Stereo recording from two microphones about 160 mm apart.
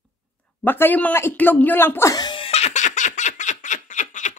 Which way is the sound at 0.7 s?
10° left (ahead or behind).